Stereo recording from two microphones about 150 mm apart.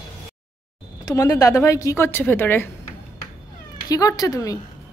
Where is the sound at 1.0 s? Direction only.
25° left (ahead or behind).